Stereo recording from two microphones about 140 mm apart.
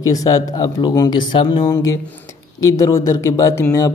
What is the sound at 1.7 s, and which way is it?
Speech, 20° left (ahead or behind).